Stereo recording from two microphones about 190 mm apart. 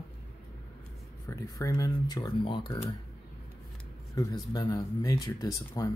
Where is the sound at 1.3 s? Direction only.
15° left (ahead or behind).